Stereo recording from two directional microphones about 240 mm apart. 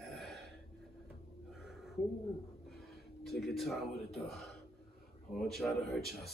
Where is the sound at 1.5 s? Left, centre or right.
Centre.